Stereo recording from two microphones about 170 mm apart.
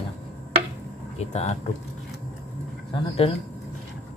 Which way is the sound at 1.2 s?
40° left (ahead or behind).